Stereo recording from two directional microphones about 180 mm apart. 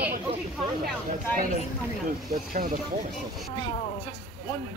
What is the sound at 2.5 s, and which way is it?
Speech, 55° right (ahead or behind).